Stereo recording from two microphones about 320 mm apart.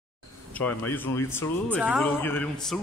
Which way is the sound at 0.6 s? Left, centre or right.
Centre.